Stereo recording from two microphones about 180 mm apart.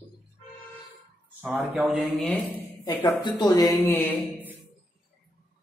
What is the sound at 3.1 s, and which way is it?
Speech, 25° left (ahead or behind).